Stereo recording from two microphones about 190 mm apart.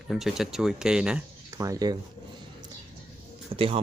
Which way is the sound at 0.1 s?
Centre (ahead or behind).